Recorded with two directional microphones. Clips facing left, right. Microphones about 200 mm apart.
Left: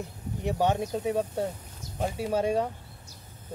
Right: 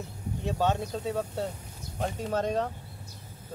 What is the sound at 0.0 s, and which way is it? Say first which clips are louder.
Speech: left 2 dB; 15° left (ahead or behind).